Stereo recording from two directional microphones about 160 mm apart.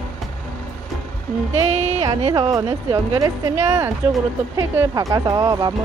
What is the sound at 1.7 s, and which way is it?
Speech, 45° right (ahead or behind).